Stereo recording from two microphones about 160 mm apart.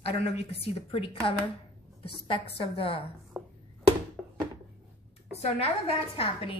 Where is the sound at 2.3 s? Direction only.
35° left (ahead or behind).